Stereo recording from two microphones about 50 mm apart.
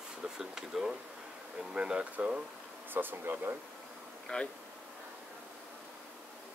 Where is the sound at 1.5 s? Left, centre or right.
Right.